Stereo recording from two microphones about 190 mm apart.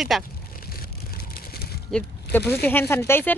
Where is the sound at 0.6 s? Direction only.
50° left (ahead or behind).